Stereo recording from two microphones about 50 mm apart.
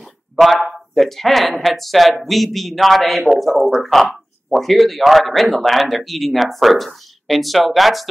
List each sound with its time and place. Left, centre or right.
0.0 s a man's voice: centre